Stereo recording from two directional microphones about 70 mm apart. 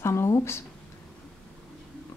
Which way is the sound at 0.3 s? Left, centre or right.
Left.